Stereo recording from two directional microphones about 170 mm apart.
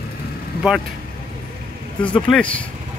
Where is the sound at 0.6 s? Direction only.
5° right (ahead or behind).